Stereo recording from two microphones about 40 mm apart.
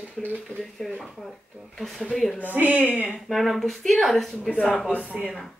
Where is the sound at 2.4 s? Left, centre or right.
Right.